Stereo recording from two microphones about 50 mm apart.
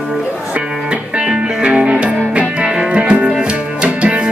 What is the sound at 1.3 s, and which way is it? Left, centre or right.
Music, centre.